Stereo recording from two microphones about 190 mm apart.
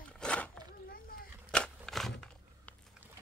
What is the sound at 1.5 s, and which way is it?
Crunch, 5° left (ahead or behind).